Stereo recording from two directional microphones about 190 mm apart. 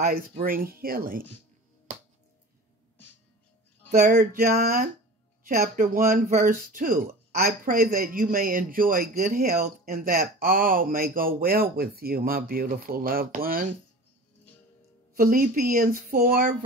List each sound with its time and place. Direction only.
0.0 s speech: 50° right (ahead or behind)
1.9 s music: 45° right (ahead or behind)
4.1 s speech: 55° right (ahead or behind)
15.1 s speech: 50° right (ahead or behind)